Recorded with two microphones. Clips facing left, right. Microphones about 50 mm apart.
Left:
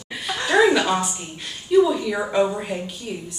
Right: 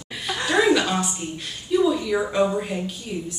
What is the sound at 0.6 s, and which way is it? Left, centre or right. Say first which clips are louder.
Speech: left 2 dB; centre.